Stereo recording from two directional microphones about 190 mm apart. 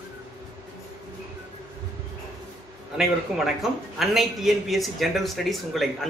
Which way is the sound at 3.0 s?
5° right (ahead or behind).